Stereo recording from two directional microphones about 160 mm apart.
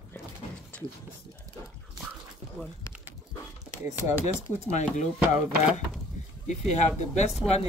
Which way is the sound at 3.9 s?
45° left (ahead or behind).